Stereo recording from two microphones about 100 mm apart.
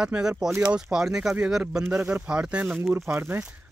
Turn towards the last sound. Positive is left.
turn(degrees=-10)  # may be behind; listen again after turning